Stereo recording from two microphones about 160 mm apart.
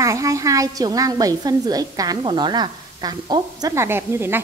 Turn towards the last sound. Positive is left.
turn(degrees=-15)  # may be behind; listen again after turning